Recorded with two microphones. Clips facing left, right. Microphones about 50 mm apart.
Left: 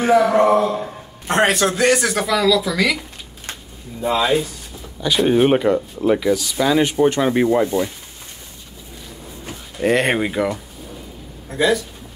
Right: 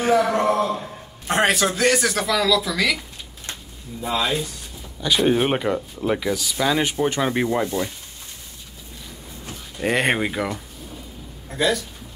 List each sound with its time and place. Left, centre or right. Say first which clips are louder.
0.0 s a man's voice: left 4 dB; centre
1.3 s speech: left 3 dB; centre
9.8 s a man's voice: left 3 dB; centre